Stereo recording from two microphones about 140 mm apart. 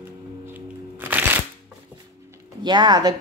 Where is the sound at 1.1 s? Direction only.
15° right (ahead or behind).